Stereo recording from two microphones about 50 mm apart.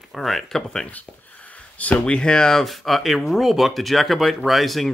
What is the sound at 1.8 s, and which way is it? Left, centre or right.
Speech, left.